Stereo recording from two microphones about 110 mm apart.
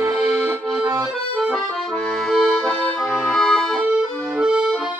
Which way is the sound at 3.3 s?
5° left (ahead or behind).